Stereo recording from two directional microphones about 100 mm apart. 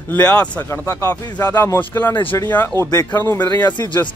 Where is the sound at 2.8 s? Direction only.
30° left (ahead or behind).